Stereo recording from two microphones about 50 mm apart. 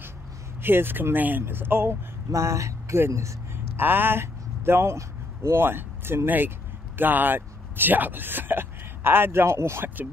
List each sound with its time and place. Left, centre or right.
0.6 s speech: right
2.3 s speech: right
3.5 s speech: right